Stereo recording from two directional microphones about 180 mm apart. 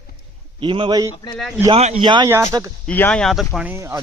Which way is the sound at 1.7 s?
35° right (ahead or behind).